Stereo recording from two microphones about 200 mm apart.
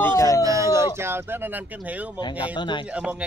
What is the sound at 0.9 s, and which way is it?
Speech, 10° right (ahead or behind).